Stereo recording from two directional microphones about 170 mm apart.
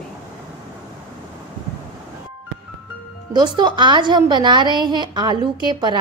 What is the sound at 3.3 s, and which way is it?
A woman's voice, 25° right (ahead or behind).